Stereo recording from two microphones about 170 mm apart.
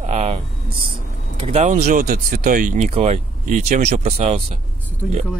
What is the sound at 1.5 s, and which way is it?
Speech, 40° right (ahead or behind).